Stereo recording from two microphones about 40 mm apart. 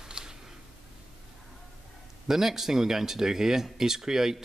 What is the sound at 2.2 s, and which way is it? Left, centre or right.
Speech, centre.